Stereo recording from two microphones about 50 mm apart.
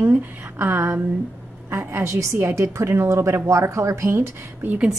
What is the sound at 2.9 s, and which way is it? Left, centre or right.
Speech, right.